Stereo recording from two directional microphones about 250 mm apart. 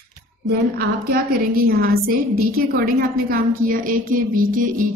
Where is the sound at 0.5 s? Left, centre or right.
Right.